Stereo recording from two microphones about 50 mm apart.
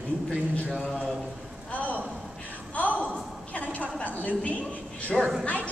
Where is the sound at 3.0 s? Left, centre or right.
Left.